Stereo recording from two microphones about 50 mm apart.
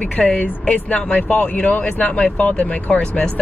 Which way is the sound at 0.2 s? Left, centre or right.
Centre.